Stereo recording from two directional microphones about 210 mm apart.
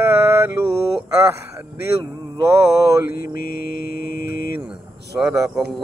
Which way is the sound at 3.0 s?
45° left (ahead or behind).